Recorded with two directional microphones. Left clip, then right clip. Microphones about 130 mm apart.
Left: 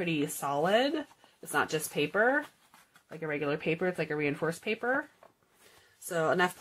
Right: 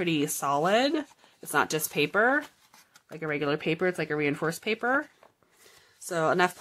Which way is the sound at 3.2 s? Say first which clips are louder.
Right 4 dB; 55° right (ahead or behind).